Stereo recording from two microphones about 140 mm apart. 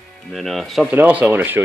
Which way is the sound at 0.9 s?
10° right (ahead or behind).